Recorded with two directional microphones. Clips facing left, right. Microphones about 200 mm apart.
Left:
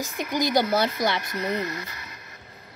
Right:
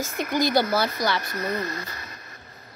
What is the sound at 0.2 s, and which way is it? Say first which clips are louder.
Speech: right 1 dB; 15° left (ahead or behind).